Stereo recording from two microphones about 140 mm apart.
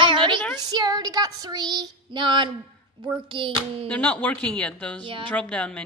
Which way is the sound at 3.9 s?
10° left (ahead or behind).